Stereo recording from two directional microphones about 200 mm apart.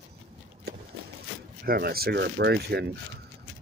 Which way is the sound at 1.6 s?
50° right (ahead or behind).